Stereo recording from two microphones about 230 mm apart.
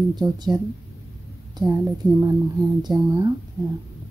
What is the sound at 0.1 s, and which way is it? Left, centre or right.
Speech, centre.